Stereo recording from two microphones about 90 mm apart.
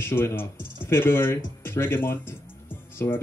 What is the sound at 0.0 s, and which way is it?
Speech, 25° left (ahead or behind).